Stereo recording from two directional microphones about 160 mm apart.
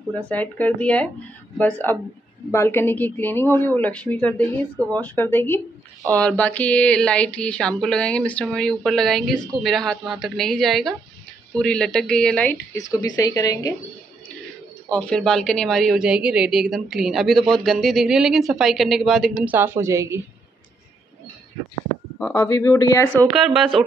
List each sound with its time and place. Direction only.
0.3 s a sound: 10° left (ahead or behind)
9.6 s a woman's voice: centre (ahead or behind)
12.7 s speech: 25° left (ahead or behind)
14.9 s a woman's voice: 5° left (ahead or behind)
19.5 s a woman's voice: 15° right (ahead or behind)
22.2 s a sound: 15° left (ahead or behind)
23.3 s a woman's voice: 5° right (ahead or behind)